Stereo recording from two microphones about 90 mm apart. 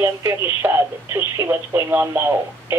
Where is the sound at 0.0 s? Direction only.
35° right (ahead or behind).